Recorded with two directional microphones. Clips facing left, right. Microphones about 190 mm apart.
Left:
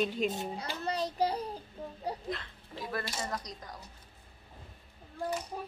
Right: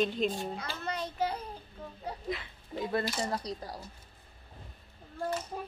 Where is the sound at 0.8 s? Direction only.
35° left (ahead or behind).